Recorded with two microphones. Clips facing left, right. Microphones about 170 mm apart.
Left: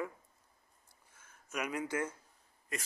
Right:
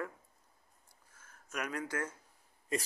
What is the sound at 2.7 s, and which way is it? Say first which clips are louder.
Speech: right 7 dB; 25° right (ahead or behind).